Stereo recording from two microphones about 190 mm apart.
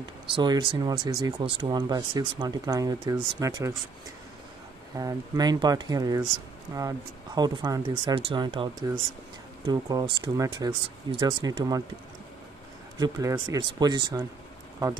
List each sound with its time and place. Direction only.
0.3 s speech: 25° right (ahead or behind)
4.9 s speech: 20° right (ahead or behind)
13.0 s speech: 15° right (ahead or behind)